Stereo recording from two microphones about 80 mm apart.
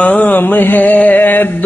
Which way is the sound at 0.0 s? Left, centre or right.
Left.